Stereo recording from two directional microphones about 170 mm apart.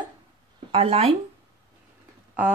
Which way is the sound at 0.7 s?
35° right (ahead or behind).